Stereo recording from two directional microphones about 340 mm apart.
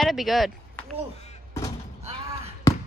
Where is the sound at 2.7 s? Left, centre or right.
Centre.